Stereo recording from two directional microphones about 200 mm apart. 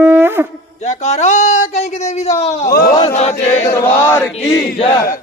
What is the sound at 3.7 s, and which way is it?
Chant, 10° left (ahead or behind).